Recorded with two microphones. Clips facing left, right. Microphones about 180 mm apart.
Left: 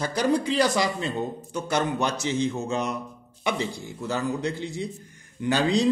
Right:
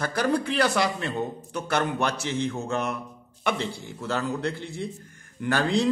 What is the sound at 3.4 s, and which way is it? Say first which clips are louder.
Speech: even; 15° left (ahead or behind).